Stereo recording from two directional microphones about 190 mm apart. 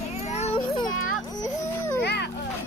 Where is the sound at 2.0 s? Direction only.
60° left (ahead or behind).